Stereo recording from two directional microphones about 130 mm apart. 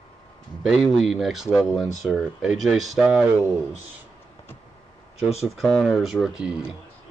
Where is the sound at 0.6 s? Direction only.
Centre (ahead or behind).